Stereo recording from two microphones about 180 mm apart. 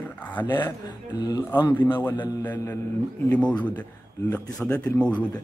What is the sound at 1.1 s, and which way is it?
Speech, 20° left (ahead or behind).